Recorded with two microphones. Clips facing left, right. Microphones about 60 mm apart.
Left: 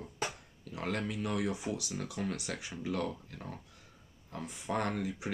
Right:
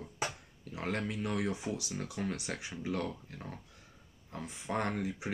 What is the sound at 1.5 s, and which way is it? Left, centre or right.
Speech, centre.